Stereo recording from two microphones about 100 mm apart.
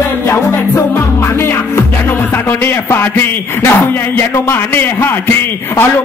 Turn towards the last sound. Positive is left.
turn(degrees=25)  # may be behind; listen again after turning